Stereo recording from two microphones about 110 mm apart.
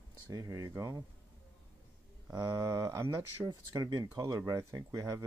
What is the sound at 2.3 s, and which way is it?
Speech, 35° right (ahead or behind).